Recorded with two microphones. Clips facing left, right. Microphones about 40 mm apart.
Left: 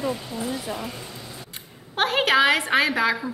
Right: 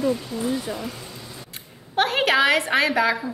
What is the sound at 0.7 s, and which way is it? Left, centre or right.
Speech, centre.